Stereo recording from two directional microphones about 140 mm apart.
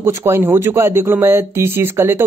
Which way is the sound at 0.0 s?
15° right (ahead or behind).